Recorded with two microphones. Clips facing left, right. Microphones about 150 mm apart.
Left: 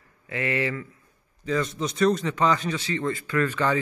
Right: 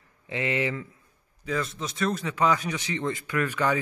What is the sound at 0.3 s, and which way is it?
Speech, 20° right (ahead or behind).